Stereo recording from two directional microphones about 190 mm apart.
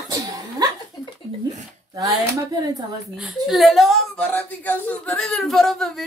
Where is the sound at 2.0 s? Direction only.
20° right (ahead or behind).